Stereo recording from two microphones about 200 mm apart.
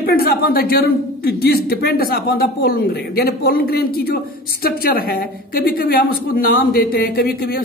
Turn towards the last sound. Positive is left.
turn(degrees=50)  # may be behind; listen again after turning